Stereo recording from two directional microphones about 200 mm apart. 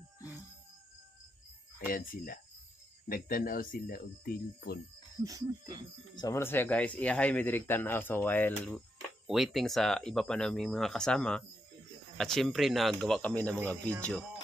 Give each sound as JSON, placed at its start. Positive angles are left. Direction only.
{"t": 1.9, "sound": "speech", "side_deg": 45}
{"t": 5.2, "sound": "speech", "side_deg": -15}
{"t": 6.1, "sound": "speech", "side_deg": 15}